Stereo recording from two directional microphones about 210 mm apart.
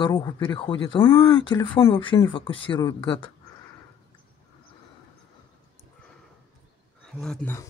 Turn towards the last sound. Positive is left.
turn(degrees=5)  # may be behind; listen again after turning